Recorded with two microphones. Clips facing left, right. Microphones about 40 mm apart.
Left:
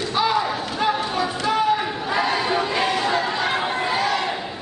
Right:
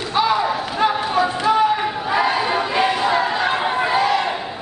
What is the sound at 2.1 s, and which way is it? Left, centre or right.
Chatter, centre.